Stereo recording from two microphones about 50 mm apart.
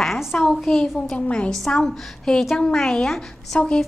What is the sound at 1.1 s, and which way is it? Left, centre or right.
Speech, centre.